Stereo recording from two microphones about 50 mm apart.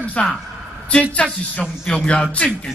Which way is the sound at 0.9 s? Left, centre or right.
Left.